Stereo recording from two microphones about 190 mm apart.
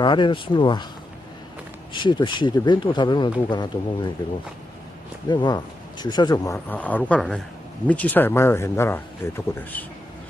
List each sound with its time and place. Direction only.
0.0 s speech: 25° left (ahead or behind)
2.0 s speech: 25° left (ahead or behind)
5.3 s speech: 25° left (ahead or behind)